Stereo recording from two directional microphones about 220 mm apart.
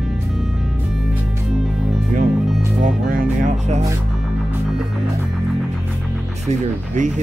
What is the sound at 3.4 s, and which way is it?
Music, 30° right (ahead or behind).